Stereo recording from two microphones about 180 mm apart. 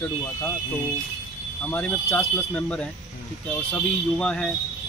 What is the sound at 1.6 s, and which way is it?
Speech, 10° left (ahead or behind).